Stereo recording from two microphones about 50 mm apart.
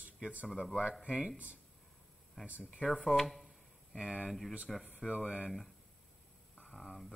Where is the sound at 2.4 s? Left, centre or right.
Right.